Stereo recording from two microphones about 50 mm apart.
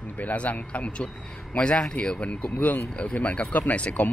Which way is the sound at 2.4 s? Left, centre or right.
Left.